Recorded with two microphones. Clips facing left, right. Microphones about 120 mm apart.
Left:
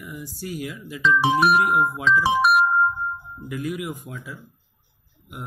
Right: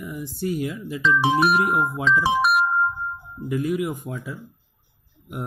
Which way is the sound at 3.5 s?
30° right (ahead or behind).